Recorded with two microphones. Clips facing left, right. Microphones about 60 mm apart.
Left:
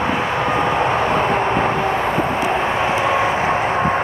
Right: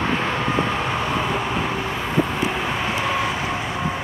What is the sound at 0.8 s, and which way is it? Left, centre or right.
Vehicle, left.